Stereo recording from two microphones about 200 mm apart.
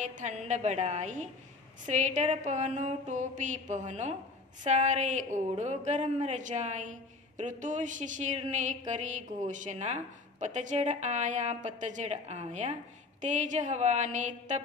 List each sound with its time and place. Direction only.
0.0 s a woman's voice: 35° right (ahead or behind)